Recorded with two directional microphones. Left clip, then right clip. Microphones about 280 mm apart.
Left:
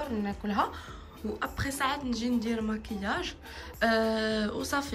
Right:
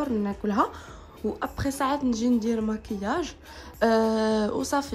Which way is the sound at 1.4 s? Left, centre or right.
Centre.